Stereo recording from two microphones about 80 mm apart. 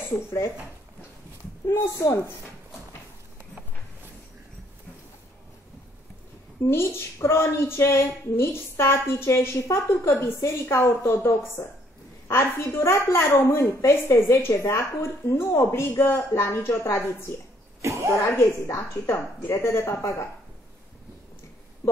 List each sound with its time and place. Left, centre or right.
2.0 s a woman's voice: left
6.6 s a woman's voice: left
17.8 s speech: right
18.3 s a woman's voice: left
21.8 s speech: left